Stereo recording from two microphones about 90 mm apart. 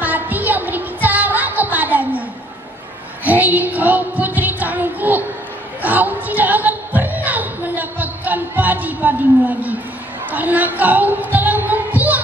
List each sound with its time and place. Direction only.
0.0 s music: 20° right (ahead or behind)
3.3 s child singing: 20° right (ahead or behind)
5.8 s music: 20° right (ahead or behind)
10.3 s speech: 20° right (ahead or behind)
11.3 s music: 20° right (ahead or behind)